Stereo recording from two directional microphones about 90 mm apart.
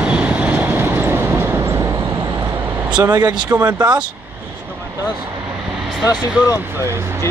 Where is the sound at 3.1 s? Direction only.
50° right (ahead or behind).